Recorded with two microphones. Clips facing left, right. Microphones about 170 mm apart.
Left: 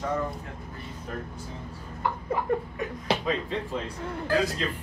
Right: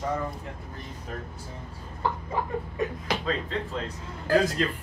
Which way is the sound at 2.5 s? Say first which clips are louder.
Left 5 dB; 65° left (ahead or behind).